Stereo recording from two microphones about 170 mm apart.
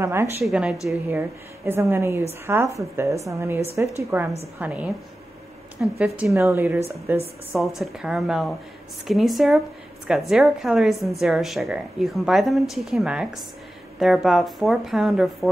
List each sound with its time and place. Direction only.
0.0 s speech: 15° right (ahead or behind)
0.4 s a woman's voice: 5° right (ahead or behind)
7.5 s a woman's voice: centre (ahead or behind)